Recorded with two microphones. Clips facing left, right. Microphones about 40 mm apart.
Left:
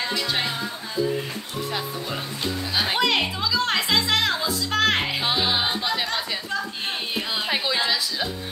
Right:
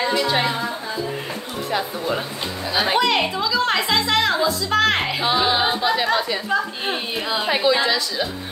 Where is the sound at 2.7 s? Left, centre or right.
Centre.